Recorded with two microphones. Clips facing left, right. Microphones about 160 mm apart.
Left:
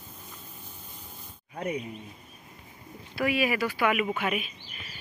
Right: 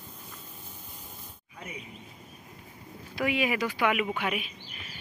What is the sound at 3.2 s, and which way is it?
Speech, 20° right (ahead or behind).